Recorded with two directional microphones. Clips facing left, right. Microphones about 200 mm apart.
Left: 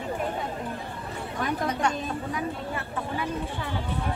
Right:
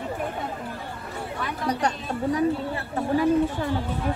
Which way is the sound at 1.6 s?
35° right (ahead or behind).